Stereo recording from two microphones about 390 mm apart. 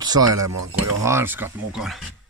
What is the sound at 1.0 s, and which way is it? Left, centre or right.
Speech, centre.